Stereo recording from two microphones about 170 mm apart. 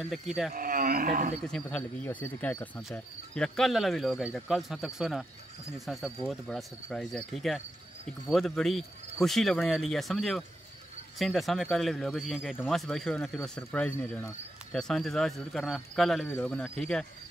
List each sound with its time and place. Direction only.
0.0 s speech: centre (ahead or behind)
0.6 s speech: 55° right (ahead or behind)
1.4 s speech: 5° left (ahead or behind)